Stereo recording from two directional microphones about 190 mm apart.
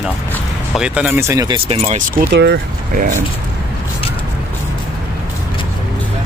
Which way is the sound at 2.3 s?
60° right (ahead or behind).